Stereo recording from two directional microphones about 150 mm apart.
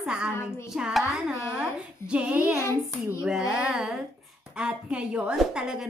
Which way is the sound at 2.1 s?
10° right (ahead or behind).